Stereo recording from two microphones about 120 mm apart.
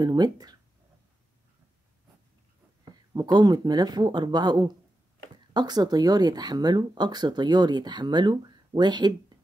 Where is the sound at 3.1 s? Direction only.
35° right (ahead or behind).